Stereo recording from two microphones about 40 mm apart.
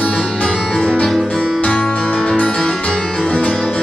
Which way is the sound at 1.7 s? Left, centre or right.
Left.